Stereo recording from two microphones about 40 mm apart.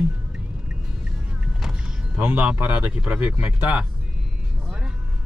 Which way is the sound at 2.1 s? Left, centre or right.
Right.